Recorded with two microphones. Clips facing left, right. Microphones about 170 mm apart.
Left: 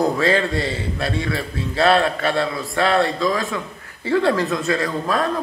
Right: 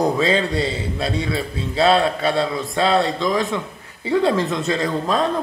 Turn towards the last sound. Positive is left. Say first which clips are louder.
# right 1 dB
turn(degrees=-20)  # may be behind; listen again after turning